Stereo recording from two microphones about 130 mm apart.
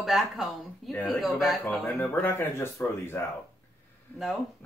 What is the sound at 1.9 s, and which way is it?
Speech, 15° left (ahead or behind).